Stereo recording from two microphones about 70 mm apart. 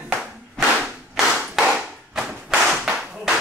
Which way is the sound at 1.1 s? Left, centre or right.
Centre.